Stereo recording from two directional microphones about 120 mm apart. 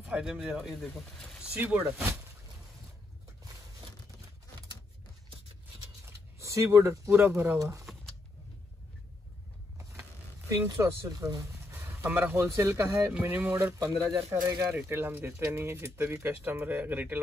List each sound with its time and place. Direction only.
0.0 s speech: 10° right (ahead or behind)
6.0 s speech: 25° right (ahead or behind)
7.5 s speech: 30° right (ahead or behind)
10.5 s speech: 25° right (ahead or behind)
14.7 s speech: 15° right (ahead or behind)